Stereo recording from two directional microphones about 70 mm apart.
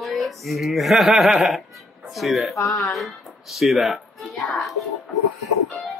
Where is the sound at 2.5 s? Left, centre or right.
Left.